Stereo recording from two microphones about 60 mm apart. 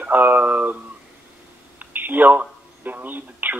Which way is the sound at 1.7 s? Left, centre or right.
Right.